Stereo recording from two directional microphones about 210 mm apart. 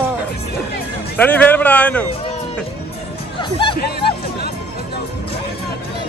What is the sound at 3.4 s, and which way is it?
Music, 25° left (ahead or behind).